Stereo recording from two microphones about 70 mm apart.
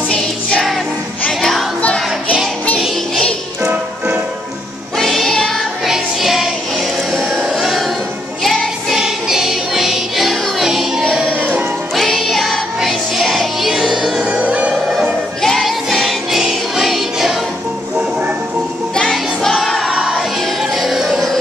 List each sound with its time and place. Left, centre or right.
0.1 s music: centre
3.6 s music: right
4.9 s music: centre
5.9 s music: centre
14.3 s music: centre
14.7 s music: centre
18.9 s music: centre